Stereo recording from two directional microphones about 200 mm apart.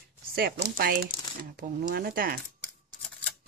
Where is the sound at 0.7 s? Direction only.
50° right (ahead or behind).